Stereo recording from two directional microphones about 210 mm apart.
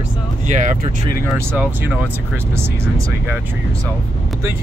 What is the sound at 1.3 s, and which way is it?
Speech, 5° right (ahead or behind).